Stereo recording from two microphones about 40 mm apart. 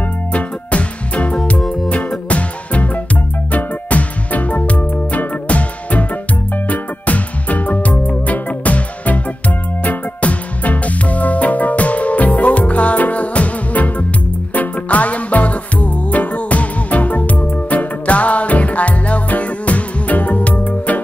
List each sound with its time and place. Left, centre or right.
0.3 s music: left
1.6 s music: centre
1.9 s music: left